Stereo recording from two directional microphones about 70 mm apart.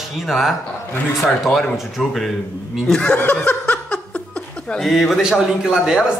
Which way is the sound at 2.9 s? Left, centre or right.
Centre.